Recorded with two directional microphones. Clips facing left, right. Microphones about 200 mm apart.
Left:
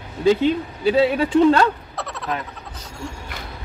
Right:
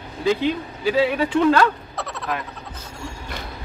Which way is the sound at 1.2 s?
25° left (ahead or behind).